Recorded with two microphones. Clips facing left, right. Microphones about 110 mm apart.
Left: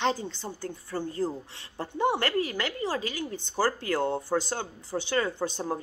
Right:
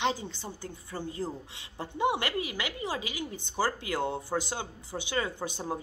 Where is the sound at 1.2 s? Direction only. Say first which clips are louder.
Left 5 dB; 10° left (ahead or behind).